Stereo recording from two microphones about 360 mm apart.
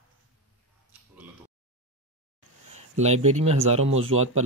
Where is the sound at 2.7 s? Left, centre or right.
Centre.